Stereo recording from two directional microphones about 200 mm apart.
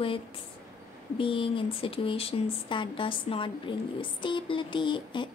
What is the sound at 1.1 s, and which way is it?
Speech, 25° left (ahead or behind).